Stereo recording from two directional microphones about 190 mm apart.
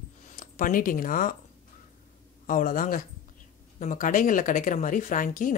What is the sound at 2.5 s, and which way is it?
Speech, 45° left (ahead or behind).